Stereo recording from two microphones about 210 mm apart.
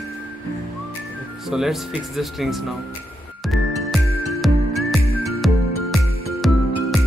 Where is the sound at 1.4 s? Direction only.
Centre (ahead or behind).